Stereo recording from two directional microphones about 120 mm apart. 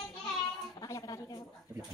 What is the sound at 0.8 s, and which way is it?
Speech, 30° left (ahead or behind).